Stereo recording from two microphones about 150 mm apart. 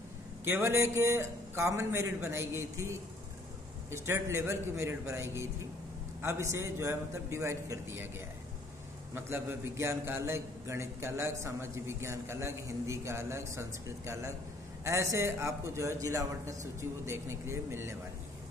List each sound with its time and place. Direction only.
0.5 s a man's voice: 15° right (ahead or behind)
9.1 s a man's voice: 15° right (ahead or behind)